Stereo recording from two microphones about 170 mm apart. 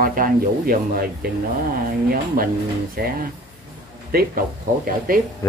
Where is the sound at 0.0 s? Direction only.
55° right (ahead or behind).